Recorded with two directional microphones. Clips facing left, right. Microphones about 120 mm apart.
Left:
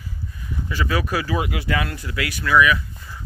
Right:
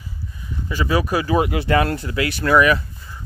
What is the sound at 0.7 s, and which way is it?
Speech, 25° right (ahead or behind).